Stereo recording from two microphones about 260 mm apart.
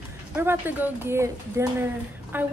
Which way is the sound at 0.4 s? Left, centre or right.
Centre.